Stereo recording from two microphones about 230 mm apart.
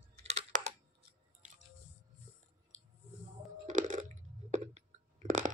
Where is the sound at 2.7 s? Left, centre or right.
Right.